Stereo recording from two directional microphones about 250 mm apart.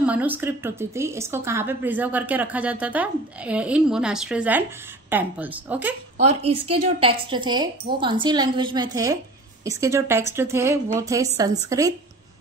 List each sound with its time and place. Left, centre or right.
0.0 s a woman's voice: centre
6.2 s a woman's voice: right